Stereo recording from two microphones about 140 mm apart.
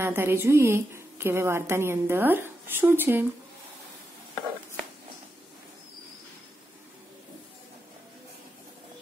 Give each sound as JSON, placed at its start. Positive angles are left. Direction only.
{"t": 0.0, "sound": "a woman's voice", "side_deg": -15}